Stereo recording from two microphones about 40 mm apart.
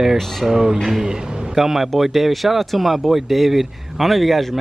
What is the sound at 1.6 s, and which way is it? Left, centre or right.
Speech, centre.